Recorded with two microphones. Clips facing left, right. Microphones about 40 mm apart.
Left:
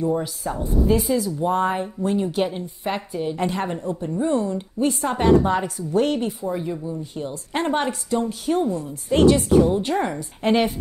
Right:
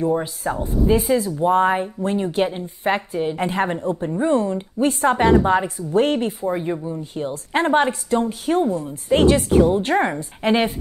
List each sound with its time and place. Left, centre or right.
0.0 s a woman's voice: right
2.6 s a woman's voice: right